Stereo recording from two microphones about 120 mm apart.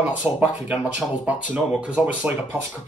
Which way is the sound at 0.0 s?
10° right (ahead or behind).